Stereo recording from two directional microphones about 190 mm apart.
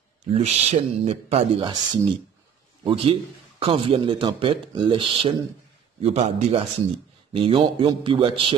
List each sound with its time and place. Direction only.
0.3 s a man's voice: 35° right (ahead or behind)